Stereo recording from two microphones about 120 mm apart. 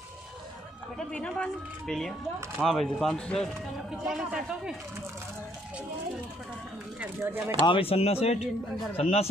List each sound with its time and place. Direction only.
0.9 s speech: 5° left (ahead or behind)
7.0 s speech: 20° right (ahead or behind)
7.6 s speech: 50° left (ahead or behind)